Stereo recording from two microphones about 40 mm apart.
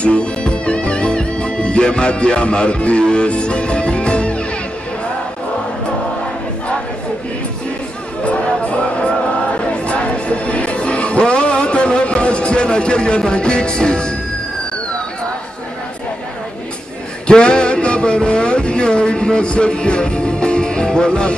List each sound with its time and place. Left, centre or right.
0.0 s music: left
8.2 s music: left
17.3 s a sound: left